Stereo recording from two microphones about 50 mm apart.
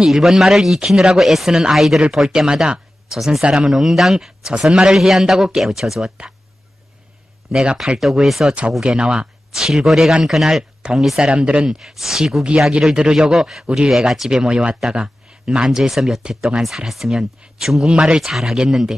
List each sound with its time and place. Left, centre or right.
0.0 s a man's voice: centre
3.7 s a man's voice: centre
7.5 s speech: centre
8.8 s a man's voice: centre
11.2 s speech: right
11.8 s a man's voice: centre
12.4 s speech: centre
14.4 s speech: centre
16.2 s speech: centre
16.6 s a man's voice: centre